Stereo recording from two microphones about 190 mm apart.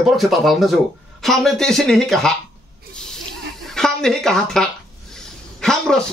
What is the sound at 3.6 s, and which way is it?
A woman's voice, 5° left (ahead or behind).